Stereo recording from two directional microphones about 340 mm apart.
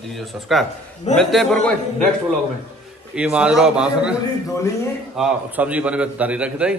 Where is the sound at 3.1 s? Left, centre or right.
Centre.